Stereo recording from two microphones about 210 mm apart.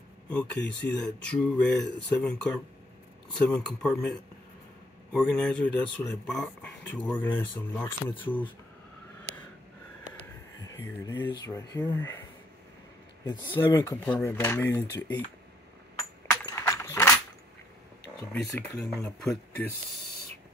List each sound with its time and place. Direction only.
0.3 s speech: 5° left (ahead or behind)
10.6 s speech: 15° left (ahead or behind)
13.2 s speech: 20° left (ahead or behind)
16.3 s a sound: 15° left (ahead or behind)
18.3 s speech: centre (ahead or behind)